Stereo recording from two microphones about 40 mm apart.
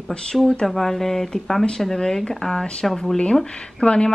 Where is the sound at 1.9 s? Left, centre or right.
Centre.